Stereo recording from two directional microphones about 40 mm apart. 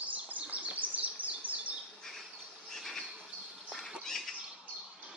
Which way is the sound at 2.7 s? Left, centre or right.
Centre.